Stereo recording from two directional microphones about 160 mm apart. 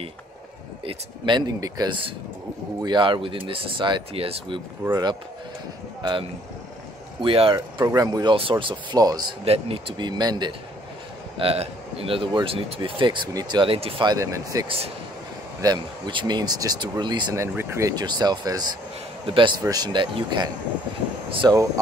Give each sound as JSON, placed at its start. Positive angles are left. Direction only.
{"t": 0.8, "sound": "speech", "side_deg": -30}
{"t": 4.8, "sound": "speech", "side_deg": -20}
{"t": 7.2, "sound": "speech", "side_deg": -35}
{"t": 9.4, "sound": "speech", "side_deg": -35}
{"t": 11.3, "sound": "a man's voice", "side_deg": -35}